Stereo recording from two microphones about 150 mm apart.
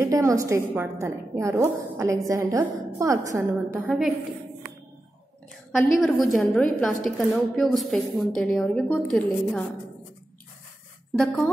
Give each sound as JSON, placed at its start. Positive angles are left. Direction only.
{"t": 0.0, "sound": "a woman's voice", "side_deg": -20}
{"t": 3.8, "sound": "a woman's voice", "side_deg": -5}
{"t": 5.7, "sound": "a woman's voice", "side_deg": 0}
{"t": 11.1, "sound": "a woman's voice", "side_deg": 5}